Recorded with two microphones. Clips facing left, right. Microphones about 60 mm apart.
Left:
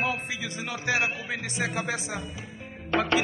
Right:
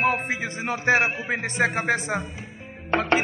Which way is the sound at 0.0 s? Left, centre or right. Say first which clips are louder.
Right 6 dB; right.